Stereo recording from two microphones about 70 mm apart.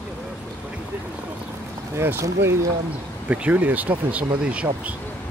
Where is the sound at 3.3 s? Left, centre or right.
Right.